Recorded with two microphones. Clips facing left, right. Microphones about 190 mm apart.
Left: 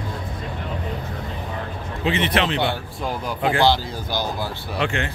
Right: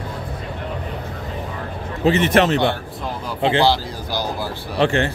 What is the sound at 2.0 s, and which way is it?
Speech, 45° right (ahead or behind).